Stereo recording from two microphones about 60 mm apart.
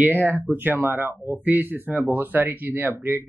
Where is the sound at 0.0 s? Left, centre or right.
Right.